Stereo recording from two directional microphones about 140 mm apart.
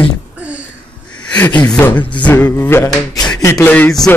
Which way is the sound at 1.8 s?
10° left (ahead or behind).